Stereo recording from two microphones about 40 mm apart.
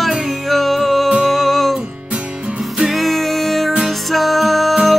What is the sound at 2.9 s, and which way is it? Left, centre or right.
Music, centre.